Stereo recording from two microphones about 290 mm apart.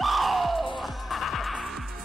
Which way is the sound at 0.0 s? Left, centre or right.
Centre.